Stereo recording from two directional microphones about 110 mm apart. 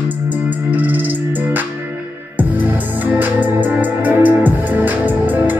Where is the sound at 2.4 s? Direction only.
15° right (ahead or behind).